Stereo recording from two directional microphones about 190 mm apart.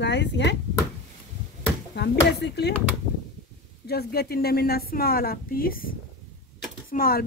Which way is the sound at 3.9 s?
55° left (ahead or behind).